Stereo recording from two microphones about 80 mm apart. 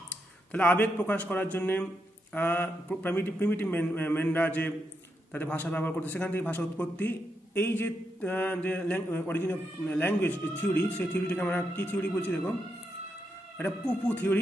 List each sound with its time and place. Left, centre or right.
0.5 s speech: left
13.6 s speech: centre